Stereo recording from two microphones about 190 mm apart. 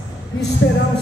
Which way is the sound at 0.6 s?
80° left.